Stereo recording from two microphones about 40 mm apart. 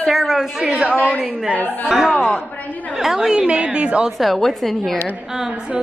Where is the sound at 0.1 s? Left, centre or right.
Centre.